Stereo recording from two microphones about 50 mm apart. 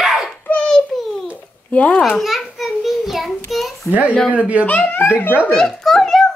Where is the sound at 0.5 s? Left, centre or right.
Left.